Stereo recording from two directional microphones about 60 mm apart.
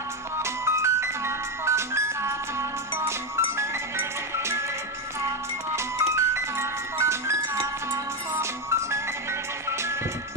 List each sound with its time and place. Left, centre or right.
0.4 s music: right
5.9 s music: right